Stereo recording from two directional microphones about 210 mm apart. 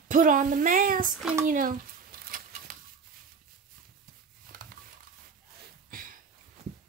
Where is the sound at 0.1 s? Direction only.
40° right (ahead or behind).